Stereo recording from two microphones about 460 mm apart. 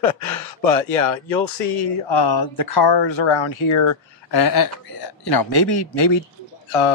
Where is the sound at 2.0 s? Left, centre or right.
Left.